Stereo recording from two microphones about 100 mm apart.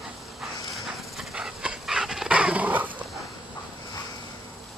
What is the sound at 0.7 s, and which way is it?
Dog, 5° right (ahead or behind).